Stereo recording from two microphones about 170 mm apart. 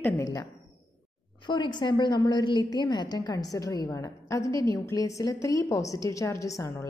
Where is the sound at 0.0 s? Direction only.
20° left (ahead or behind).